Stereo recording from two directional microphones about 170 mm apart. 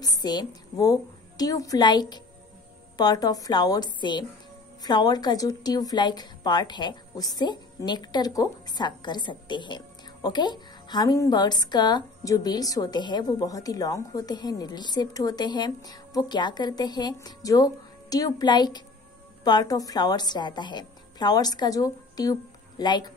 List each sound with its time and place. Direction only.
0.0 s a woman's voice: 25° left (ahead or behind)